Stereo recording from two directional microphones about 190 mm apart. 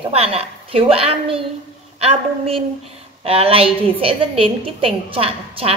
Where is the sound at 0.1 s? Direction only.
30° right (ahead or behind).